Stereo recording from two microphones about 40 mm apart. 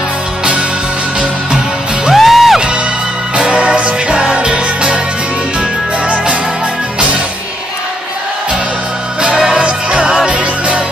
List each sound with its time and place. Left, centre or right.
2.1 s music: centre
3.3 s music: right
6.0 s music: right
9.4 s music: right
10.3 s music: right